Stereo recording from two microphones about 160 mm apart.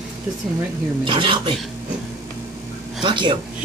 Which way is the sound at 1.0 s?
30° right (ahead or behind).